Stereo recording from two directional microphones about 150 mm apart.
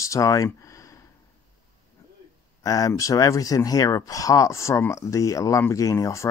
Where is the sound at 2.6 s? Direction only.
25° left (ahead or behind).